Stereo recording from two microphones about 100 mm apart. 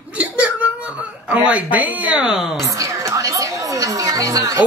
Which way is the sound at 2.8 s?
35° right (ahead or behind).